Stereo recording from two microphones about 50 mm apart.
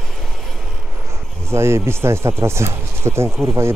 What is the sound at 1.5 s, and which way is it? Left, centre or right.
Speech, right.